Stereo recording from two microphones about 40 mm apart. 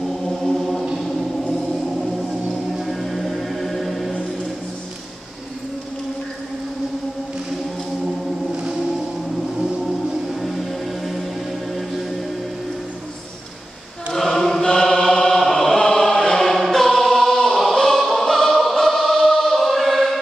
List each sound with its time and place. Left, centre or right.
0.3 s music: centre
0.9 s choir: centre
2.8 s music: centre
14.1 s choir: centre
17.7 s music: centre
18.5 s choir: centre